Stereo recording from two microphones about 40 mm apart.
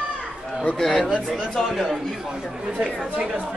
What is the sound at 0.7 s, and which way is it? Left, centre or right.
Speech, centre.